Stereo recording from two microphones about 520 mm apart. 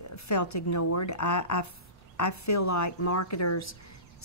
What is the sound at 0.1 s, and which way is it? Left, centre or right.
A woman's voice, left.